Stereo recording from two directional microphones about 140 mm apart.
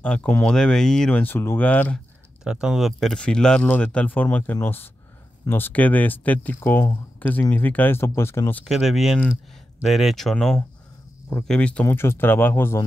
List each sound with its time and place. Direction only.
0.0 s speech: 10° left (ahead or behind)
2.4 s speech: 5° right (ahead or behind); by 8.6 s 15° left (ahead or behind)
8.6 s speech: centre (ahead or behind)
11.8 s speech: 15° left (ahead or behind)